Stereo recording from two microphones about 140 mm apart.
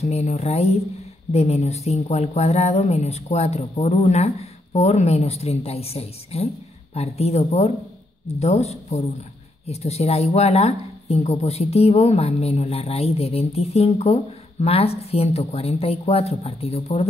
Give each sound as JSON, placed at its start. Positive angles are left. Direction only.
{"t": 0.0, "sound": "speech", "side_deg": 50}